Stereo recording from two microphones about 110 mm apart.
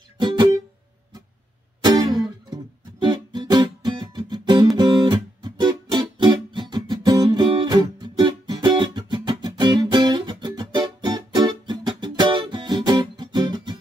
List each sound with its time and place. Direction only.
1.8 s music: 40° right (ahead or behind)
4.7 s guitar: 40° right (ahead or behind)